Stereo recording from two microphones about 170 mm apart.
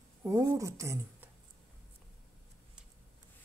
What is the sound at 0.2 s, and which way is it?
Speech, 15° right (ahead or behind).